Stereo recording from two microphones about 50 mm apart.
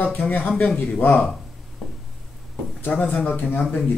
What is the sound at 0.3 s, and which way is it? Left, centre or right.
Speech, left.